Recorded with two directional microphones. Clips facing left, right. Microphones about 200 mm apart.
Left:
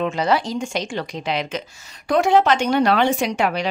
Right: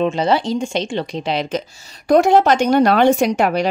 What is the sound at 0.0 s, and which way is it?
Speech, 25° right (ahead or behind).